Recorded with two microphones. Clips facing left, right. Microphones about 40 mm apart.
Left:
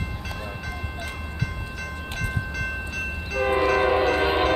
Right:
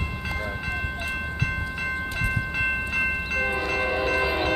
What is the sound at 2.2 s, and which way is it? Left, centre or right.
Train, right.